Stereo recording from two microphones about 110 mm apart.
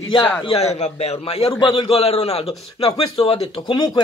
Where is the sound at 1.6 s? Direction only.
40° left (ahead or behind).